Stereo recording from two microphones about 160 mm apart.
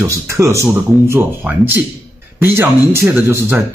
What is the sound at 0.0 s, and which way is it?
Speech, 15° right (ahead or behind).